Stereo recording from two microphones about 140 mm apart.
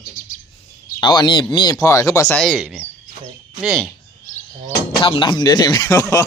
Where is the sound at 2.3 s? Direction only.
5° left (ahead or behind).